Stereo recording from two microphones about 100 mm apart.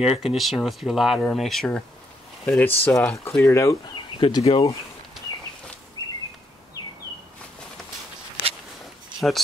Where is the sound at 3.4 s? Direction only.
30° left (ahead or behind).